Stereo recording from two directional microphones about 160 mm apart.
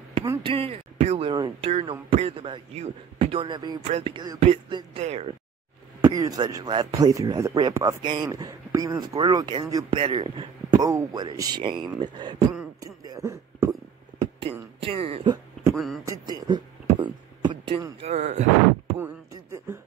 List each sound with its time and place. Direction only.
0.4 s speech: 35° right (ahead or behind)
5.9 s speech: 20° right (ahead or behind)
9.9 s speech: 35° right (ahead or behind)
10.8 s speech: 20° right (ahead or behind)
12.8 s a sound: 20° right (ahead or behind)
14.8 s speech: 35° right (ahead or behind)
15.7 s speech: centre (ahead or behind)
16.1 s a sound: 25° right (ahead or behind)
18.1 s speech: 45° right (ahead or behind)